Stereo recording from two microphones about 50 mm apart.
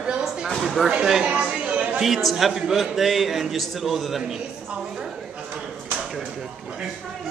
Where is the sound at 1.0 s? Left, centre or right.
Centre.